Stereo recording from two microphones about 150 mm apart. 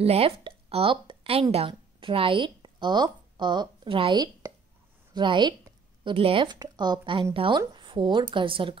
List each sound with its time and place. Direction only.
0.0 s a woman's voice: 40° right (ahead or behind)